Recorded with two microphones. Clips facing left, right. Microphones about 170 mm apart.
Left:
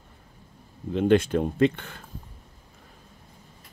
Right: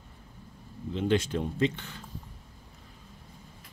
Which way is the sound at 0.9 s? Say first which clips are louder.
Left 7 dB; 55° left (ahead or behind).